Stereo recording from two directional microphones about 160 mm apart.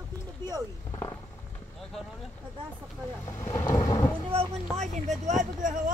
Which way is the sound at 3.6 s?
25° left (ahead or behind).